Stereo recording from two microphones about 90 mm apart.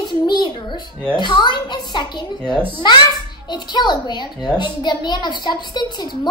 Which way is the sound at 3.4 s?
55° left (ahead or behind).